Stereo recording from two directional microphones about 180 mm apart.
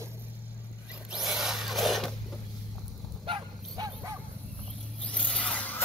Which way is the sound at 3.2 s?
30° right (ahead or behind).